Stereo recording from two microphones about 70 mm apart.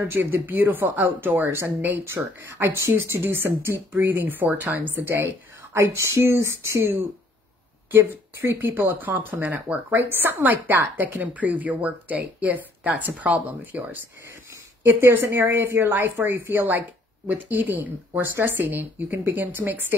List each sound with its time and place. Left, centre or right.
0.0 s speech: right
5.0 s speech: right
8.1 s speech: right